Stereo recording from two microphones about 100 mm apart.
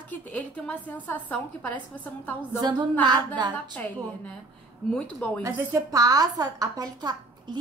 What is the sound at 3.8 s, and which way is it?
Speech, 15° left (ahead or behind).